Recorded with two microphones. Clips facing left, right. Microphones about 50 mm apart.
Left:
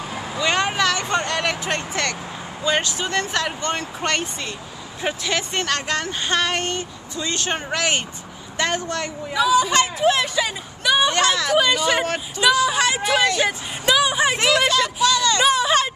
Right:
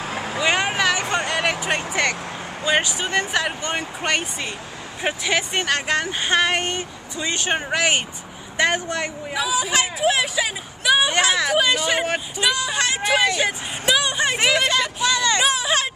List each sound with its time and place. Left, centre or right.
0.0 s vehicle: right
0.4 s vehicle: centre
1.1 s a sound: centre
2.6 s speech: centre
9.4 s speech: centre
13.2 s speech: centre
14.3 s speech: centre
14.7 s a sound: centre
15.4 s a sound: centre